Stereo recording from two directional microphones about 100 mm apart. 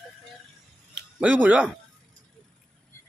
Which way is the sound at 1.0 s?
10° right (ahead or behind).